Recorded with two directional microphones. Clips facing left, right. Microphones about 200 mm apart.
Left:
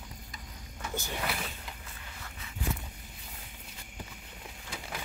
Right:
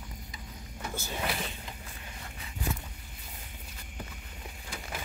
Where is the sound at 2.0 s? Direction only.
25° right (ahead or behind).